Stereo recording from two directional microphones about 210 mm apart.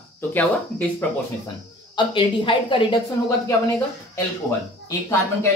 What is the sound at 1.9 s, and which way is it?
Speech, 25° left (ahead or behind).